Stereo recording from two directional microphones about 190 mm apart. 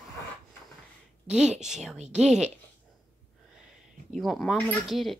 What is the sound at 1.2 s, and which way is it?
Speech, 5° right (ahead or behind).